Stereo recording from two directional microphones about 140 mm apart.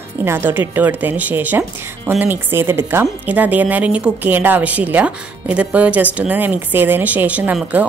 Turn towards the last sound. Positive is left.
turn(degrees=-10)  # may be behind; listen again after turning